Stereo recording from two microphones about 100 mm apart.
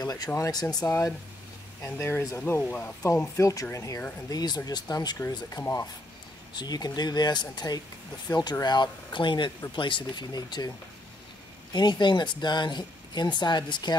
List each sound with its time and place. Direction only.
0.0 s speech: 40° left (ahead or behind)
1.8 s speech: 25° left (ahead or behind); by 10.7 s 45° left (ahead or behind)
11.7 s speech: 45° left (ahead or behind)